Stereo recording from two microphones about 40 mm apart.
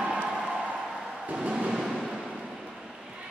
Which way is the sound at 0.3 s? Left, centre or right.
Right.